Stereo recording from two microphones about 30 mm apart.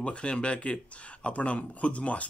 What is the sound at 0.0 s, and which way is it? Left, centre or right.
Speech, left.